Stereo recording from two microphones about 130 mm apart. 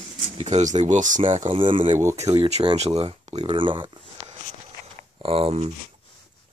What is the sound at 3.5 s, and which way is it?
Speech, 40° right (ahead or behind).